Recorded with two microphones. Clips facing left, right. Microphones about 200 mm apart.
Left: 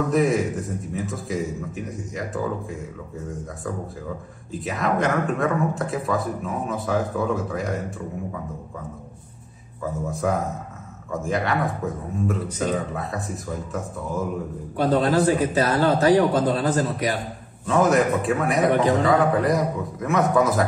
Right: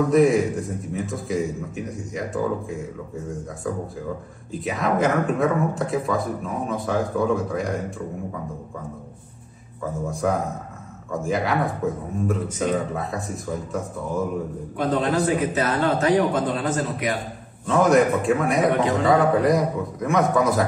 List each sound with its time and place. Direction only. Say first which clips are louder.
0.1 s speech: right 4 dB; centre (ahead or behind)
4.5 s speech: right 1 dB; centre (ahead or behind)
11.1 s speech: right 1 dB; centre (ahead or behind)
14.8 s a man's voice: left 2 dB; 35° left (ahead or behind)
17.6 s speech: right 1 dB; centre (ahead or behind)